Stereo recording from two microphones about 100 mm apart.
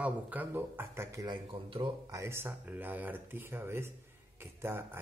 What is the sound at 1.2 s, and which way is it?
Speech, 55° right (ahead or behind).